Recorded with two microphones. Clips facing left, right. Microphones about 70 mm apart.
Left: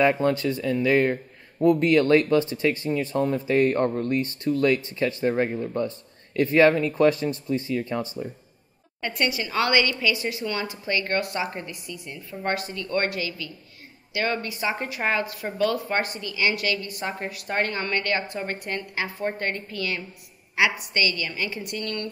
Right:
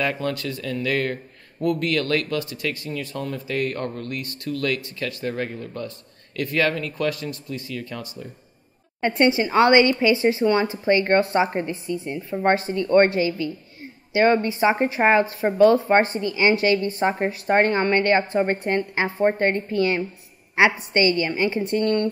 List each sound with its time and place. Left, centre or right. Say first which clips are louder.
0.0 s speech: left 4 dB; left
9.0 s speech: right 8 dB; right